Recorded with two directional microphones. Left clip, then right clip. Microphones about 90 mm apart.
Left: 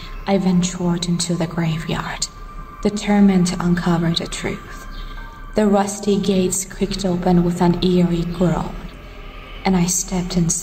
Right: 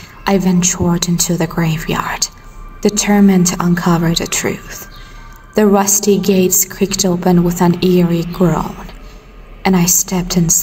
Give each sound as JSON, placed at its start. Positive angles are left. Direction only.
{"t": 0.2, "sound": "a woman's voice", "side_deg": -25}